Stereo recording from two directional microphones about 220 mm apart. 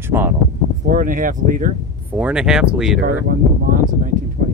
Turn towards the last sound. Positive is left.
turn(degrees=-40)  # may be behind; listen again after turning